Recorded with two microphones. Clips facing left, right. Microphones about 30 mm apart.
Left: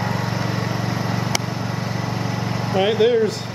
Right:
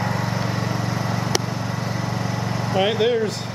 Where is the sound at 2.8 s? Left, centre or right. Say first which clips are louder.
Left 3 dB; centre.